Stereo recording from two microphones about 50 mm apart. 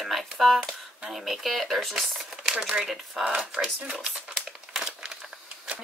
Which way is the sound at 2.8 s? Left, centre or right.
Centre.